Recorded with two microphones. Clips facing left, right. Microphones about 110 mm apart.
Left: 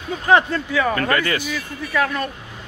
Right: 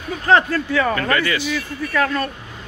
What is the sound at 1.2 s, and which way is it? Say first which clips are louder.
Speech: right 1 dB; 45° left (ahead or behind).